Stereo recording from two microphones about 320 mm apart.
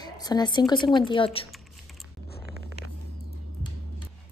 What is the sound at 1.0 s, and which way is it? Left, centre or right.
Speech, centre.